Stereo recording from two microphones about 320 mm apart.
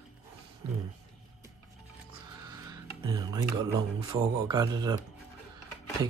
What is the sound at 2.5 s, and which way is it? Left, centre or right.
Music, centre.